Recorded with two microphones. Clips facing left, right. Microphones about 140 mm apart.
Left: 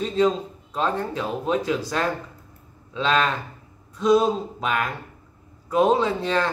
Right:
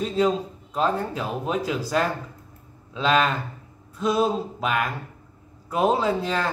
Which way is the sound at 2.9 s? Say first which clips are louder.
Right 1 dB; 5° right (ahead or behind).